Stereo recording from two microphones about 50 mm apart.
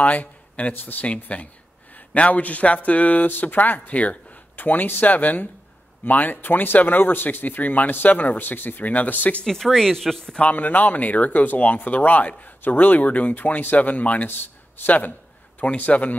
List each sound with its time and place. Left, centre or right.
0.0 s speech: left
1.3 s speech: left
9.4 s speech: centre
10.4 s speech: left